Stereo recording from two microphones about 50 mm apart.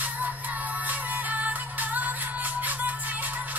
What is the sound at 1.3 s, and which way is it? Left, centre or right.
Music, right.